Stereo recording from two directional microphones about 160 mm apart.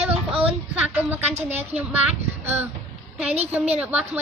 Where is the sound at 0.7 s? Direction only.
10° right (ahead or behind).